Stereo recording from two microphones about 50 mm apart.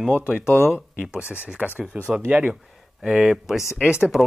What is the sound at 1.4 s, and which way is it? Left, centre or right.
Speech, right.